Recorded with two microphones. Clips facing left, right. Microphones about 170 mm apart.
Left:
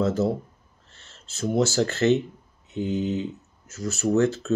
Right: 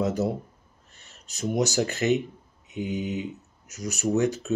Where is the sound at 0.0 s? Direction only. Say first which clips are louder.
Left 3 dB; 15° right (ahead or behind).